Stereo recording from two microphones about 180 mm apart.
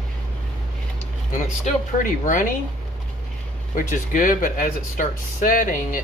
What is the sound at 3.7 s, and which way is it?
Speech, 45° left (ahead or behind).